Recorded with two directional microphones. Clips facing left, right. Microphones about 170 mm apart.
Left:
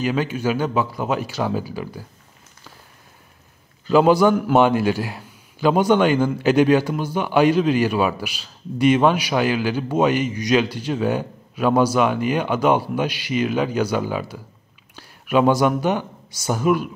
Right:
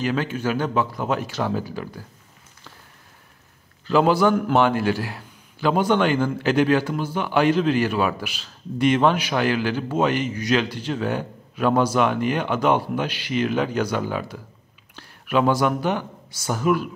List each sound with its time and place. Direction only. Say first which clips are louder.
0.0 s a man's voice: left 2 dB; 10° left (ahead or behind)
3.8 s a man's voice: left 3 dB; 15° left (ahead or behind)